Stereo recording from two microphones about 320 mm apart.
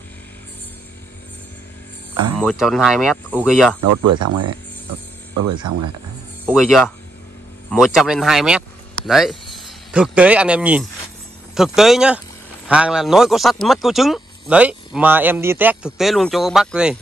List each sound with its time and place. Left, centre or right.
2.3 s speech: centre
3.8 s speech: right
6.4 s speech: centre